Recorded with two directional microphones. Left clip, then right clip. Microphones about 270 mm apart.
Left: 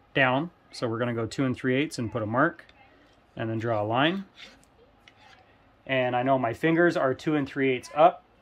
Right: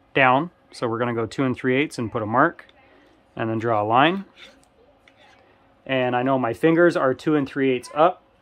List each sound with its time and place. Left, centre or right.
0.1 s speech: centre
5.9 s speech: right